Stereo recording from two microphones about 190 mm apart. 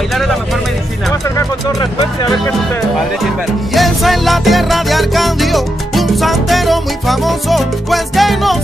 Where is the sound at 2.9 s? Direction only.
Centre (ahead or behind).